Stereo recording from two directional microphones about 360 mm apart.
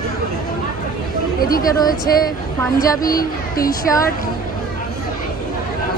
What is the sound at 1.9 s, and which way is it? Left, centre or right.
Speech, left.